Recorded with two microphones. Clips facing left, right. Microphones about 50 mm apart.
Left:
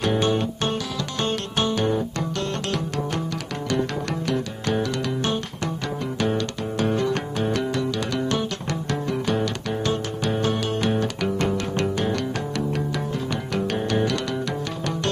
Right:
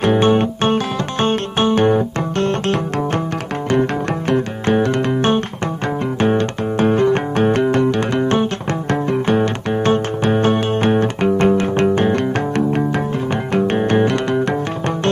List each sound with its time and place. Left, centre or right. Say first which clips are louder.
0.0 s music: right 8 dB; right
4.3 s music: right 9 dB; right